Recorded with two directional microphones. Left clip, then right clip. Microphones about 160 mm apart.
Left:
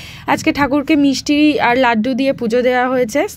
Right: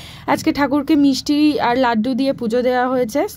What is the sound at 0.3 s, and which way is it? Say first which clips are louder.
Speech: left 2 dB; 10° left (ahead or behind).